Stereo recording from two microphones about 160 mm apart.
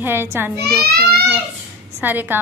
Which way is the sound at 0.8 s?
75° right (ahead or behind).